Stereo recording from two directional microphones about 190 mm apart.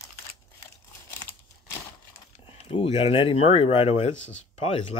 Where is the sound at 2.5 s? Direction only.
30° left (ahead or behind).